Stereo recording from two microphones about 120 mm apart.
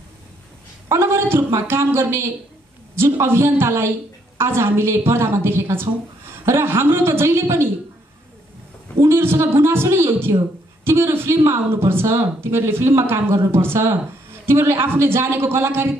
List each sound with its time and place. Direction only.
0.8 s speech: 25° right (ahead or behind)
9.0 s speech: 20° right (ahead or behind)